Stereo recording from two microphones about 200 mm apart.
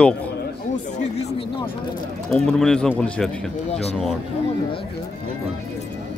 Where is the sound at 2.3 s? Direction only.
5° left (ahead or behind).